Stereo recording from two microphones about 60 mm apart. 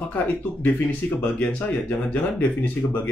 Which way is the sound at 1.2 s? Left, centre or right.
Left.